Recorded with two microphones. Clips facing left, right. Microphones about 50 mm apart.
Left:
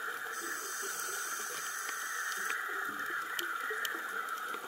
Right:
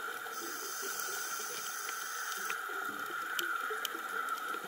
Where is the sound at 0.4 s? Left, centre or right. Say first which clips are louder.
Left 2 dB; left.